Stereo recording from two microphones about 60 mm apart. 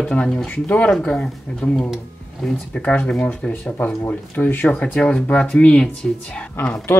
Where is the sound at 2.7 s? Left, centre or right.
Left.